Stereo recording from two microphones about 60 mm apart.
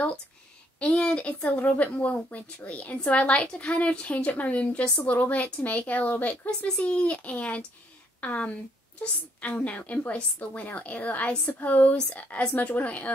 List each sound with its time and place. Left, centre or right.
0.7 s a woman's voice: centre